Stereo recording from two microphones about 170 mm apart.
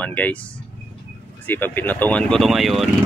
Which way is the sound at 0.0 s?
10° left (ahead or behind).